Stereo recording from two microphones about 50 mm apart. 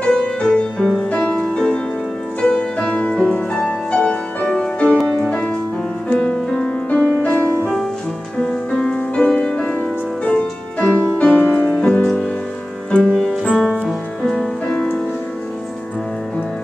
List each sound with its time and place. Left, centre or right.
0.0 s music: centre
8.4 s music: centre
12.9 s music: centre